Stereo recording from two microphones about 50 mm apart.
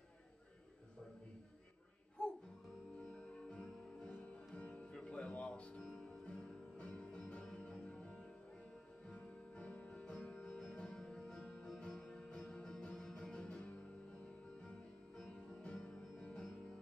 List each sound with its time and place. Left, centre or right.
2.2 s music: centre